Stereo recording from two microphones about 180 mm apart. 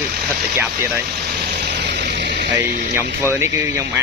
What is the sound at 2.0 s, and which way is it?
Music, 70° right (ahead or behind).